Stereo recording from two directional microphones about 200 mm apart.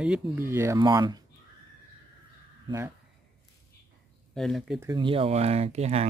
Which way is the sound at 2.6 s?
15° right (ahead or behind).